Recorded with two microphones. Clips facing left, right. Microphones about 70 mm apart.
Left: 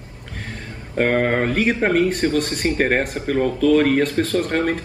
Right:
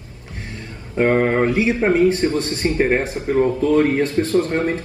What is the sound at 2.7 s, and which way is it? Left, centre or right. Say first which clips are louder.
Speech: right 2 dB; left.